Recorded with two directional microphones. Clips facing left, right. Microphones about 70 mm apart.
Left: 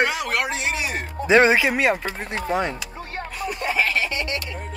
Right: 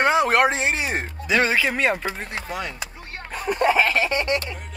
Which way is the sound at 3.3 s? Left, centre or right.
Right.